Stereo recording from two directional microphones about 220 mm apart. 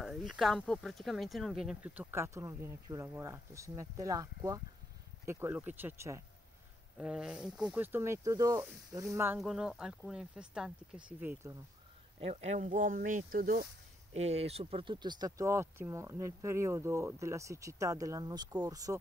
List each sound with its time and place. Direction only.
0.0 s speech: centre (ahead or behind)
12.2 s speech: 30° right (ahead or behind)
14.1 s speech: 30° right (ahead or behind)